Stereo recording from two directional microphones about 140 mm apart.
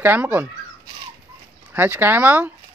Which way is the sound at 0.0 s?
15° right (ahead or behind).